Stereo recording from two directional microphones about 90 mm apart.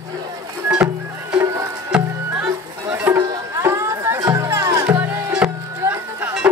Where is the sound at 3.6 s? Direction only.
30° right (ahead or behind).